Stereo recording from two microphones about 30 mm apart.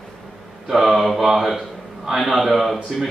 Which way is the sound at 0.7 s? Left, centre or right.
Centre.